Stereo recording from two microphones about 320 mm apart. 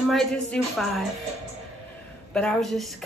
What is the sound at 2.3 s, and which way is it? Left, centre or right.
Speech, centre.